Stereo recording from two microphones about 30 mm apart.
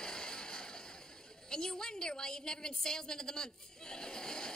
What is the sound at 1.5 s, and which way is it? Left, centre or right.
A woman's voice, left.